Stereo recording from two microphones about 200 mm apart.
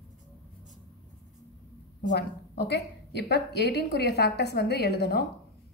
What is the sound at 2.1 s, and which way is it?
A woman's voice, 55° left (ahead or behind).